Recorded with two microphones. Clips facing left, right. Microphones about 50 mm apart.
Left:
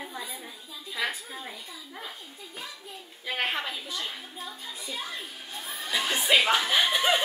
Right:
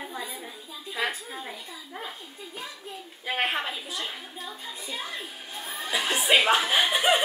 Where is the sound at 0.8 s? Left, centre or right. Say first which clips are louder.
Right 2 dB; centre.